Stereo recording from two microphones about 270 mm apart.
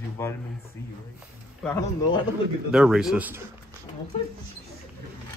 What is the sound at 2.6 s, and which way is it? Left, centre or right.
Speech, centre.